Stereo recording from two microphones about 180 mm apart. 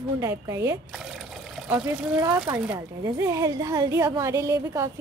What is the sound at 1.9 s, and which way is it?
Speech, 15° right (ahead or behind).